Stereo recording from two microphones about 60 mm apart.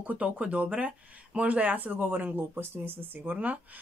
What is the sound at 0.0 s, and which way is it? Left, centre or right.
Speech, right.